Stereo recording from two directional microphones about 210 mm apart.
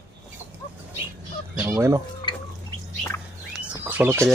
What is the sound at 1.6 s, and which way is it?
Fowl, 15° right (ahead or behind).